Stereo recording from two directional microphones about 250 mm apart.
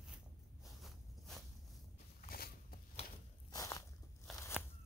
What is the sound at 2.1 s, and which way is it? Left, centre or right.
Biting, left.